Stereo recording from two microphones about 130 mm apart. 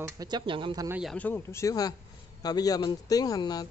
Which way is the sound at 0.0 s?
30° right (ahead or behind).